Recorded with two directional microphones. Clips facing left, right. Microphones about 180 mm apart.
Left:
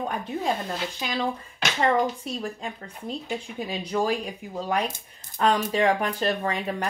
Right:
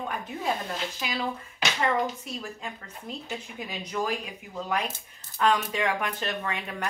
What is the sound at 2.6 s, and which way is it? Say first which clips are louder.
Speech: left 4 dB; 35° left (ahead or behind).